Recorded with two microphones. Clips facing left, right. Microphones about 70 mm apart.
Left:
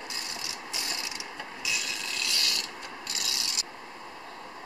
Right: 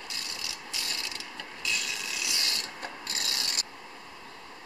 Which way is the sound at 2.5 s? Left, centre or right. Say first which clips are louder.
Even; right.